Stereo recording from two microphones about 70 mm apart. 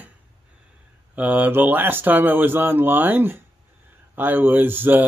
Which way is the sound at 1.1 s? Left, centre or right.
Right.